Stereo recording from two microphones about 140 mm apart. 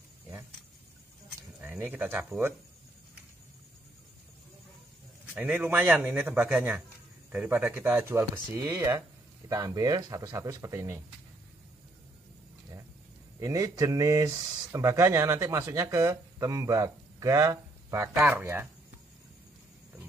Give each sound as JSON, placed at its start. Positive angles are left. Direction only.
{"t": 1.6, "sound": "speech", "side_deg": -10}
{"t": 5.3, "sound": "speech", "side_deg": -10}
{"t": 13.4, "sound": "speech", "side_deg": -25}